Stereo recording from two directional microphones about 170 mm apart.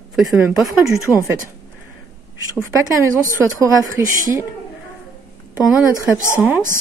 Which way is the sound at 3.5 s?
20° right (ahead or behind).